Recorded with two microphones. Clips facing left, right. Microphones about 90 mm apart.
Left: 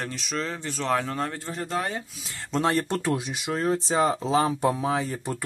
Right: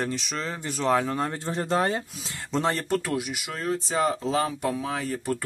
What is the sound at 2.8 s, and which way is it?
Speech, 20° left (ahead or behind).